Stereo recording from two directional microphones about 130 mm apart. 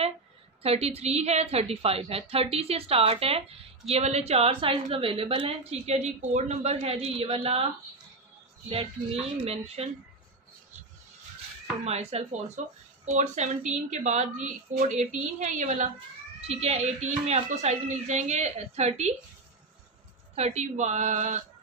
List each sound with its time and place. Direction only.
0.6 s a woman's voice: 50° right (ahead or behind)
8.6 s a woman's voice: 45° right (ahead or behind)
11.8 s a woman's voice: 55° right (ahead or behind)
16.4 s speech: 55° right (ahead or behind)
20.3 s a woman's voice: 60° right (ahead or behind)